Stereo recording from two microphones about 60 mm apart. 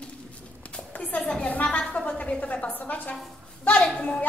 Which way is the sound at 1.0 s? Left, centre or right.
Left.